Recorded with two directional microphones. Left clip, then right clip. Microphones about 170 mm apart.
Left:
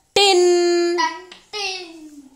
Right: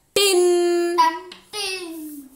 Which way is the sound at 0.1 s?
20° left (ahead or behind).